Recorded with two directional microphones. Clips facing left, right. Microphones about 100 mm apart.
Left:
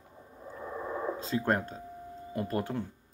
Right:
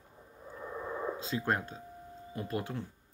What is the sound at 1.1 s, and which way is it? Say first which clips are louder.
Speech: left 5 dB; 45° left (ahead or behind).